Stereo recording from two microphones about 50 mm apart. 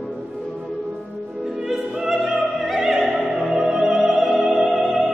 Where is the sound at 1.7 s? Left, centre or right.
Centre.